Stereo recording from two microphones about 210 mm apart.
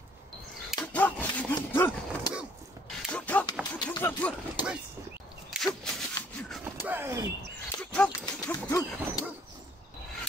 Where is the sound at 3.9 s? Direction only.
20° left (ahead or behind).